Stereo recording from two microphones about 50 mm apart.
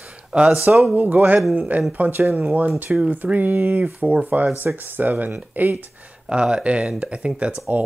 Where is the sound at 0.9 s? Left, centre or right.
Right.